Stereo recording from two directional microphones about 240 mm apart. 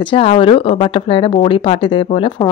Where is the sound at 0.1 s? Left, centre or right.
Left.